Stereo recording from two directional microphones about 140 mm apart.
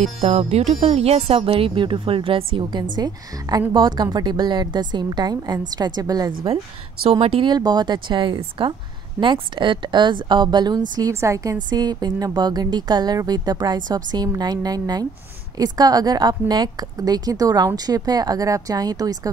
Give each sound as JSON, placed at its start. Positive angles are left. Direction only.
{"t": 0.0, "sound": "speech", "side_deg": -50}
{"t": 3.0, "sound": "a woman's voice", "side_deg": -25}
{"t": 6.5, "sound": "a woman's voice", "side_deg": -45}